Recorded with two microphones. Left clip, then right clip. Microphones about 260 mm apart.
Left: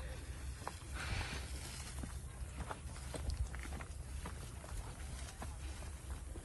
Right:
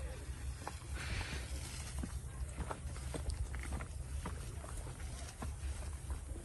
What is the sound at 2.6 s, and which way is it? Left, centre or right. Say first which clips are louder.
Boat: right 2 dB; centre.